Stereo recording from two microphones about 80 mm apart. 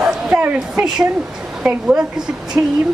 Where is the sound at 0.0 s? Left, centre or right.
Centre.